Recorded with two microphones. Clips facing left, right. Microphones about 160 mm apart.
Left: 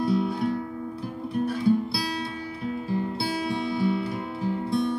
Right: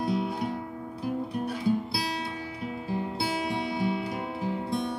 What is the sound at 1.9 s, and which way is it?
Music, 20° right (ahead or behind).